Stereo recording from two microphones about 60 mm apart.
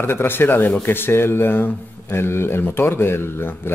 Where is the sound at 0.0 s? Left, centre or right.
Left.